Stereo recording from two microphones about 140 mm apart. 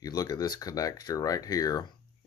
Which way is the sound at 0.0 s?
25° left (ahead or behind).